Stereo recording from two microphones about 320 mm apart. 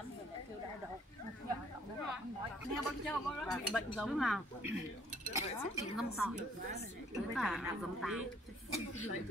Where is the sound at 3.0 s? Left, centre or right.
Centre.